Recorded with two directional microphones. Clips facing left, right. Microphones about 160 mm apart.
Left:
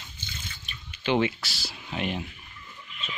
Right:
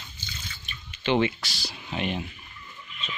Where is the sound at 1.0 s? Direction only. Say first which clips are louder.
Right 1 dB; 5° left (ahead or behind).